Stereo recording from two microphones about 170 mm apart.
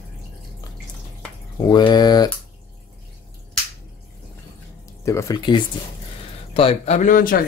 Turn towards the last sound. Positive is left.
turn(degrees=55)  # may be behind; listen again after turning